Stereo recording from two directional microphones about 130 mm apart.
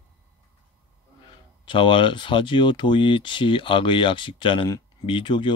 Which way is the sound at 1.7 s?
40° left (ahead or behind).